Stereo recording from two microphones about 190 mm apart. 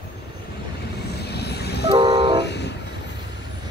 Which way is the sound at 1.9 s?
25° right (ahead or behind).